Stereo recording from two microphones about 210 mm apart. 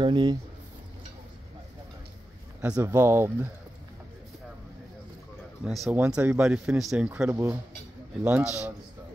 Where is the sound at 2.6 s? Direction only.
10° right (ahead or behind).